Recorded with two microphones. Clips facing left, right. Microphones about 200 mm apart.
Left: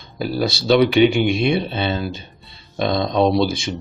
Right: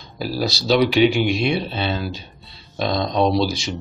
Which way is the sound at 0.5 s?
55° left (ahead or behind).